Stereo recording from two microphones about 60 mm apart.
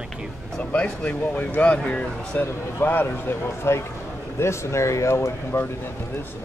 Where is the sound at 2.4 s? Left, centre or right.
Left.